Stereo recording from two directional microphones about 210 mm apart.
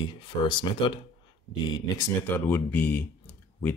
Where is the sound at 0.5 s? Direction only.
20° left (ahead or behind).